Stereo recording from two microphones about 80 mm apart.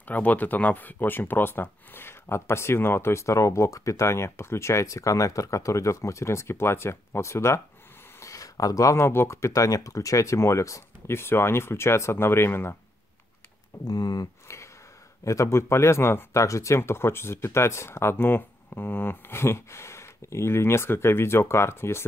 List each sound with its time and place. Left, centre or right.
0.0 s speech: centre
13.8 s speech: left
15.2 s speech: left